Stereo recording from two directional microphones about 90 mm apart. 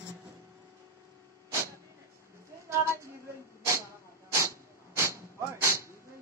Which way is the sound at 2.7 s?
30° right (ahead or behind).